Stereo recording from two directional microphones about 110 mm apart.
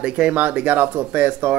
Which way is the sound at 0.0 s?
10° right (ahead or behind).